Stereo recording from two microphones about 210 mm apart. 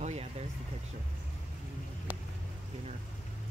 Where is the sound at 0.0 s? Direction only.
30° right (ahead or behind).